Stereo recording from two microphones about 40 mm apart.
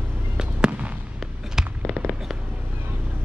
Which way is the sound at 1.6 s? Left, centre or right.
Centre.